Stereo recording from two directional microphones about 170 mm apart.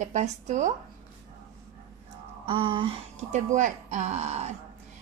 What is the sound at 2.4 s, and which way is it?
Speech, 30° right (ahead or behind).